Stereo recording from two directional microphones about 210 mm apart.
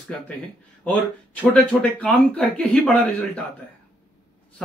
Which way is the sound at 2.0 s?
5° left (ahead or behind).